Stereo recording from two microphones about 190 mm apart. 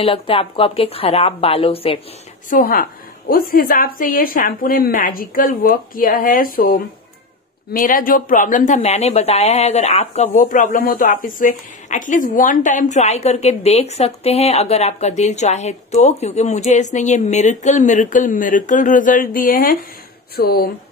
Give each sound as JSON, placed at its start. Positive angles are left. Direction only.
{"t": 0.0, "sound": "a woman's voice", "side_deg": 30}
{"t": 2.5, "sound": "a woman's voice", "side_deg": 45}